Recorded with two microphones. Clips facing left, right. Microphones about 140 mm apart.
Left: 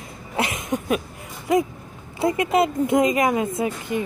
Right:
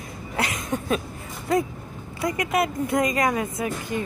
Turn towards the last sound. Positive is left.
turn(degrees=20)  # may be behind; listen again after turning